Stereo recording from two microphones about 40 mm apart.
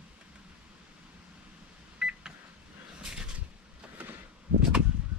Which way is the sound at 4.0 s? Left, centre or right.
Right.